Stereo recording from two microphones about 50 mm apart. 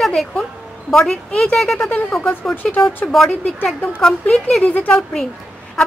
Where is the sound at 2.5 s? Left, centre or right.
Left.